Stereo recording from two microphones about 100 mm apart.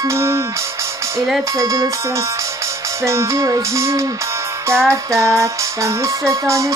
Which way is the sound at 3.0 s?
30° right (ahead or behind).